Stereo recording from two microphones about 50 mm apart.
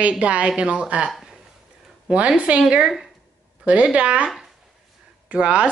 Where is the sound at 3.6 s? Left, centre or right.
Right.